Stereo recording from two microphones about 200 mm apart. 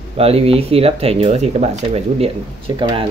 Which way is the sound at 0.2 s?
30° right (ahead or behind).